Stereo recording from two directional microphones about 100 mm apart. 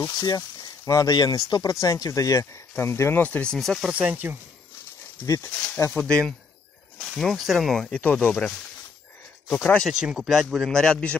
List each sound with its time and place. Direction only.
0.2 s speech: 40° left (ahead or behind)
3.2 s speech: 15° left (ahead or behind)
3.5 s a man's voice: centre (ahead or behind)
3.9 s speech: 15° right (ahead or behind)
5.2 s speech: 30° left (ahead or behind)
5.9 s a man's voice: 10° left (ahead or behind)
8.0 s speech: 15° left (ahead or behind)
9.6 s speech: 10° left (ahead or behind)
9.9 s a man's voice: 5° right (ahead or behind)